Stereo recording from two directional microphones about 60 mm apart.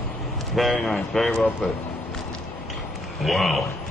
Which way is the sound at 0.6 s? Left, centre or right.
Centre.